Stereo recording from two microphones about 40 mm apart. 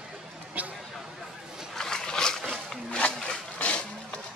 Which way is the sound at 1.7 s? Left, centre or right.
Centre.